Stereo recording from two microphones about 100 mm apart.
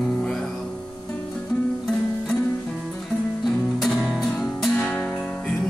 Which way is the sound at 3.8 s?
Centre (ahead or behind).